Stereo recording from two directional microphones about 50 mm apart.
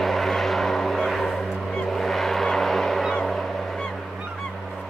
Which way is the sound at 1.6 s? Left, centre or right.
Centre.